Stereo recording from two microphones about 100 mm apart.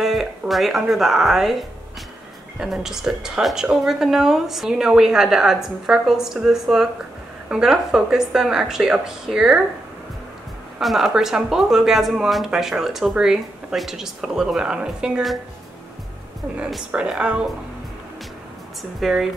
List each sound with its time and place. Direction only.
0.0 s speech: centre (ahead or behind)
10.8 s speech: centre (ahead or behind)
16.7 s speech: 5° right (ahead or behind)
18.8 s speech: centre (ahead or behind)